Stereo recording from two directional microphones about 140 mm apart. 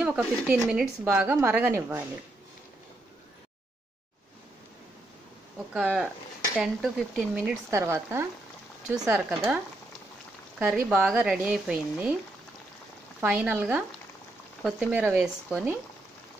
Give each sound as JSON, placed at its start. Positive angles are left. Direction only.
{"t": 0.0, "sound": "speech", "side_deg": -10}
{"t": 5.7, "sound": "speech", "side_deg": -5}
{"t": 7.7, "sound": "speech", "side_deg": -20}
{"t": 9.0, "sound": "speech", "side_deg": -10}
{"t": 10.6, "sound": "speech", "side_deg": -10}
{"t": 13.2, "sound": "speech", "side_deg": -10}
{"t": 14.9, "sound": "speech", "side_deg": -10}